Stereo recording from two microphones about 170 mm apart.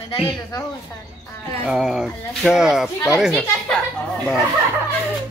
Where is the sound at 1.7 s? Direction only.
5° right (ahead or behind).